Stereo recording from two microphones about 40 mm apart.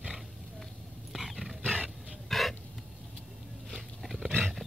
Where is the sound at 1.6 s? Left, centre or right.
Right.